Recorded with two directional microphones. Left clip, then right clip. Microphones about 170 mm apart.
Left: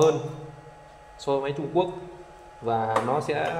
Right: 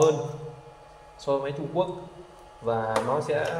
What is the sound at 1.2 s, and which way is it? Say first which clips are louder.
Speech: left 1 dB; 40° left (ahead or behind).